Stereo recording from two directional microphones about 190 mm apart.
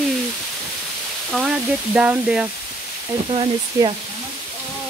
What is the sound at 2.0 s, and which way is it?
Speech, 5° right (ahead or behind).